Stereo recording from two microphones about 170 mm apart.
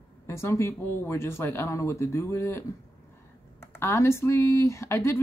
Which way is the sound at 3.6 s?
15° left (ahead or behind).